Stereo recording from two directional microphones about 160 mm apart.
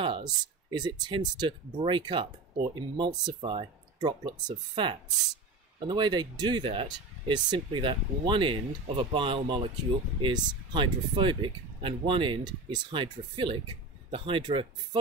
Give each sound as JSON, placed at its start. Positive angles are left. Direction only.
{"t": 0.0, "sound": "speech", "side_deg": -30}